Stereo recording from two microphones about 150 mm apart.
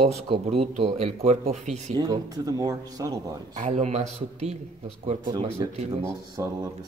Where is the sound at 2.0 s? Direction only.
25° right (ahead or behind).